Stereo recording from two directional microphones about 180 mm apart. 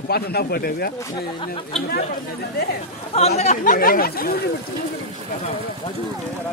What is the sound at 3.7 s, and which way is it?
Speech, 55° left (ahead or behind).